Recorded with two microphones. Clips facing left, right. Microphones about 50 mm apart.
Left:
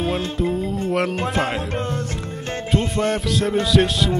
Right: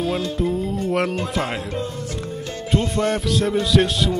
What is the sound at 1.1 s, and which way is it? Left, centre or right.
Speech, left.